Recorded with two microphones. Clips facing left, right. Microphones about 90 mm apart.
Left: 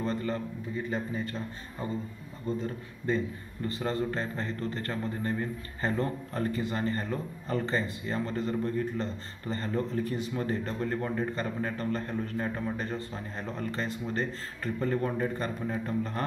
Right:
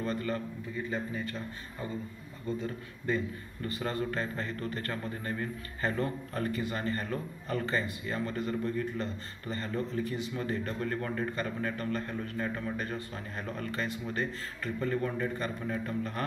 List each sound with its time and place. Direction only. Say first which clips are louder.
0.0 s a man's voice: left 2 dB; 25° left (ahead or behind)
3.6 s a man's voice: left 3 dB; 30° left (ahead or behind)